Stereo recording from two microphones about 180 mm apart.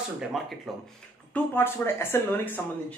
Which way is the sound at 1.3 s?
10° left (ahead or behind).